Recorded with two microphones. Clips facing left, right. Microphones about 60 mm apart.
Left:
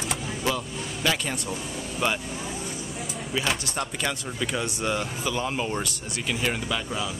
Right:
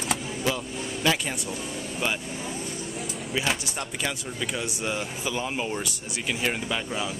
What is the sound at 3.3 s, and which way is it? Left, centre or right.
Speech, centre.